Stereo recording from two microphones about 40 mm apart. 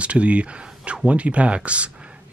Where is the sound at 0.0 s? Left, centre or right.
Right.